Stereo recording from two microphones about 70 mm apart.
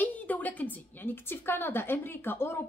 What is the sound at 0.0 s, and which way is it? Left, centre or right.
A woman's voice, left.